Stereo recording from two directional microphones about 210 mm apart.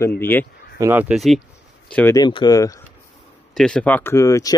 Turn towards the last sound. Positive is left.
turn(degrees=15)  # may be behind; listen again after turning